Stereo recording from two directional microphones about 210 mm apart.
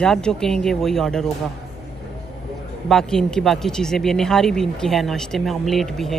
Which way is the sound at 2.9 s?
Centre (ahead or behind).